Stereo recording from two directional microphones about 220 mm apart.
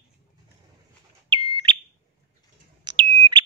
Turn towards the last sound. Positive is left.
turn(degrees=-25)  # may be behind; listen again after turning